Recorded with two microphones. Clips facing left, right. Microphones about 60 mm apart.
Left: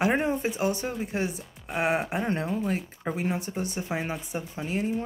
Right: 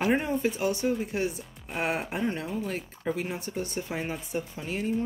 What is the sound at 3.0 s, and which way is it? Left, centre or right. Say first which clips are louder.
Speech: right 1 dB; left.